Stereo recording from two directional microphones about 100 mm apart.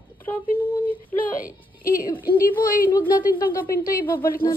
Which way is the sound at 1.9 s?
35° left (ahead or behind).